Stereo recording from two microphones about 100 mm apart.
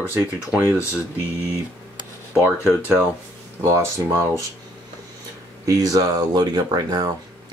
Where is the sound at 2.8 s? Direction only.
20° right (ahead or behind).